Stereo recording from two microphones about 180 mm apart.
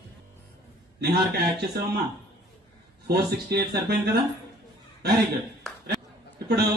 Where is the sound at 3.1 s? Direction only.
60° right (ahead or behind).